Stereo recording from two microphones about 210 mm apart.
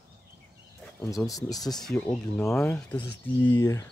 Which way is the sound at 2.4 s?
15° left (ahead or behind).